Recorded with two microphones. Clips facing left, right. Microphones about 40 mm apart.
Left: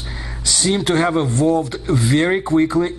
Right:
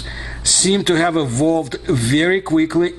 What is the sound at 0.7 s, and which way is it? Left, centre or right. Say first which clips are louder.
Speech: right 2 dB; right.